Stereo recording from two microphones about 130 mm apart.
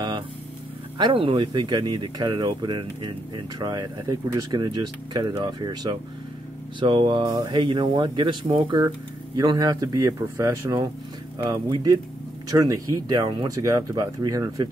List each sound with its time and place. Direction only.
0.9 s speech: 40° right (ahead or behind)